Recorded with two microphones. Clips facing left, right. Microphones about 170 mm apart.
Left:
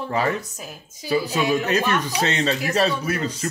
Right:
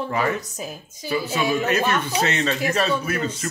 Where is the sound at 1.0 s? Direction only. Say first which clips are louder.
Left 2 dB; 35° left (ahead or behind).